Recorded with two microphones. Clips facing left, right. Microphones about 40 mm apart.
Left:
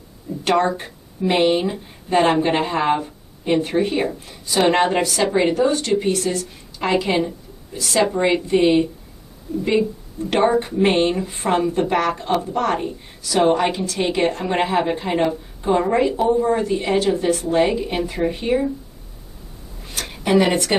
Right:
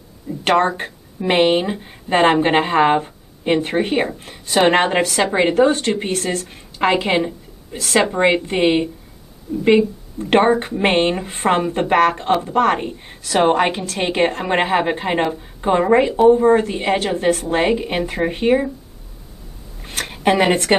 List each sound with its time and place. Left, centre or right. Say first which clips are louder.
0.4 s speech: right 2 dB; right
2.0 s speech: right 2 dB; right
10.3 s speech: right 3 dB; right
19.8 s a sound: right 7 dB; right